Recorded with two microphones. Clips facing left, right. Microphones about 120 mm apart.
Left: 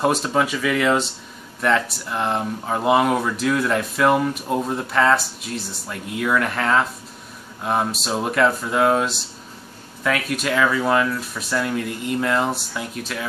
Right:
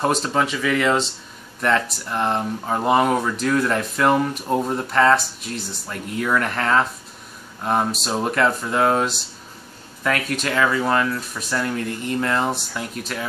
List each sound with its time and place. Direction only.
0.0 s speech: 5° left (ahead or behind)